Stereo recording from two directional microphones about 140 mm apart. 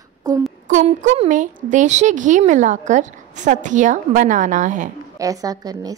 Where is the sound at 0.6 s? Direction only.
60° right (ahead or behind).